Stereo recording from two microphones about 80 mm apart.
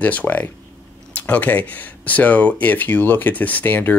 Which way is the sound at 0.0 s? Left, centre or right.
Left.